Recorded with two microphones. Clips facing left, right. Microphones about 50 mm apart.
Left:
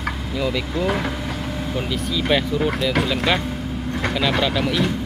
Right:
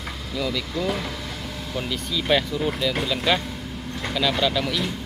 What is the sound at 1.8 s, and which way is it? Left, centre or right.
Speech, centre.